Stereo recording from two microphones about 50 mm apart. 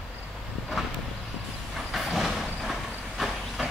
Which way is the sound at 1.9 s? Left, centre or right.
Centre.